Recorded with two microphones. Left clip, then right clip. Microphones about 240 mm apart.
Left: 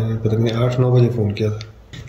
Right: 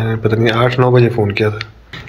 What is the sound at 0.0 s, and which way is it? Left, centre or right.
Speech, centre.